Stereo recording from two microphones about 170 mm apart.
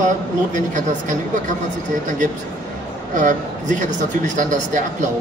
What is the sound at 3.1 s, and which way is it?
Speech, 45° right (ahead or behind).